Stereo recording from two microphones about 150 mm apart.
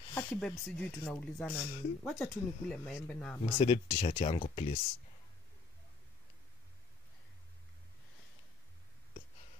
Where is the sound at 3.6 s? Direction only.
35° left (ahead or behind).